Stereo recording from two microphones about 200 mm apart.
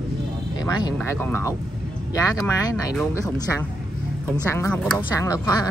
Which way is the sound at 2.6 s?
15° left (ahead or behind).